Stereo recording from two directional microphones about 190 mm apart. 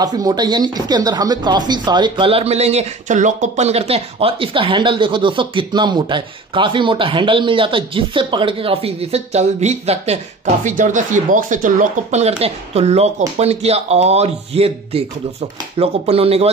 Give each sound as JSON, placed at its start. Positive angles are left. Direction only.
{"t": 0.0, "sound": "speech", "side_deg": -20}